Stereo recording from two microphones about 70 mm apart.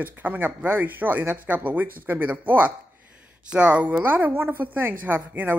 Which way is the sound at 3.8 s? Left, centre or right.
Right.